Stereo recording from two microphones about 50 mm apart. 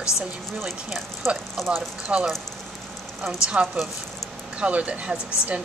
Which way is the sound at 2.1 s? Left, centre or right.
Centre.